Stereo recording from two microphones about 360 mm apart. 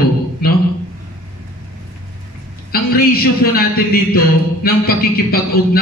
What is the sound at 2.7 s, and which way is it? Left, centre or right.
A man's voice, left.